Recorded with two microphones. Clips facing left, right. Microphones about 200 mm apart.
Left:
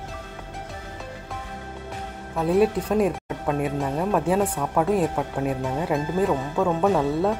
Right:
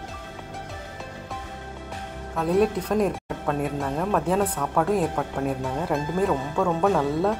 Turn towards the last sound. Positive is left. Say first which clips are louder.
# left 1 dB
turn(degrees=5)  # may be behind; listen again after turning